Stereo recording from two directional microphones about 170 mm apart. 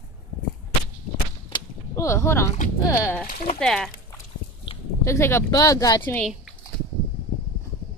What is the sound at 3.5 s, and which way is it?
Speech, 5° left (ahead or behind).